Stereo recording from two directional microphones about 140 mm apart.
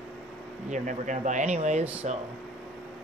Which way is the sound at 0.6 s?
60° right (ahead or behind).